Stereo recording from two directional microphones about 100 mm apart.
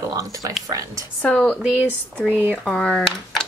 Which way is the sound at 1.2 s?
10° left (ahead or behind).